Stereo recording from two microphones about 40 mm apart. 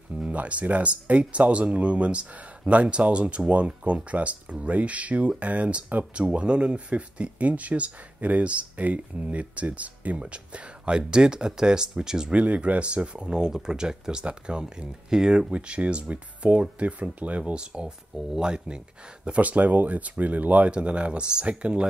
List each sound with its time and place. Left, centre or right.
0.1 s speech: right; by 12.3 s centre
12.3 s speech: right
15.5 s speech: right
17.6 s speech: right
19.4 s speech: right
20.7 s speech: right